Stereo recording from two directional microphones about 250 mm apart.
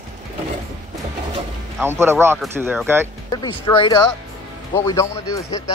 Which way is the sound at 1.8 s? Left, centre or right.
Centre.